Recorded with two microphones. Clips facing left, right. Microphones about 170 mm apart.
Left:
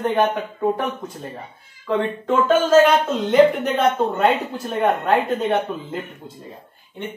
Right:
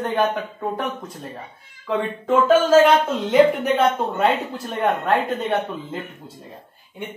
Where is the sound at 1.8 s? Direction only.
Centre (ahead or behind).